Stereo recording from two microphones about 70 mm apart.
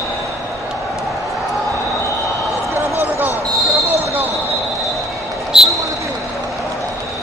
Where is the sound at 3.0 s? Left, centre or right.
Right.